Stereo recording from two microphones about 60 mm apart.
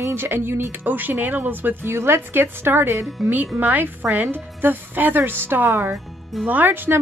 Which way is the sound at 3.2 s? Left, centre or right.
Right.